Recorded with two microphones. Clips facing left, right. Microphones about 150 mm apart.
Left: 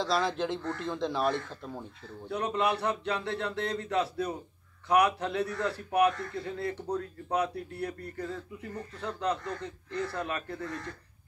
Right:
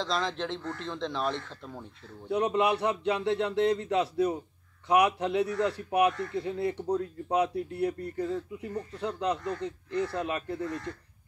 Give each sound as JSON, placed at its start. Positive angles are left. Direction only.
{"t": 0.0, "sound": "speech", "side_deg": 10}
{"t": 2.2, "sound": "a man's voice", "side_deg": -20}